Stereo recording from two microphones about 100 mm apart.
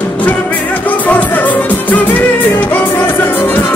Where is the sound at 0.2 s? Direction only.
15° left (ahead or behind).